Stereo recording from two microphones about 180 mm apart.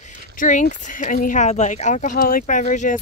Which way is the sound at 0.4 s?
45° left (ahead or behind).